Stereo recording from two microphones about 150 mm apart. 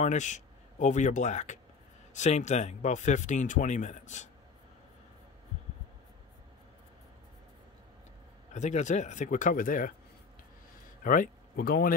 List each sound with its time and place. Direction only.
0.0 s speech: 55° left (ahead or behind)
8.5 s speech: 50° left (ahead or behind)
11.1 s speech: 70° left (ahead or behind)